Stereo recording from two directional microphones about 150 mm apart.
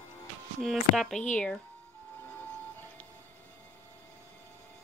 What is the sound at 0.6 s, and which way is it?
Speech, centre (ahead or behind).